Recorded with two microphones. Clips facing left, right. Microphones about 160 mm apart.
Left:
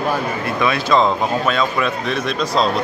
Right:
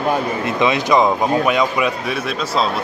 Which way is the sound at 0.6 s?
15° right (ahead or behind).